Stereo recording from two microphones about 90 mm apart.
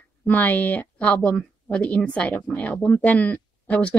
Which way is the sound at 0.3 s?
20° left (ahead or behind).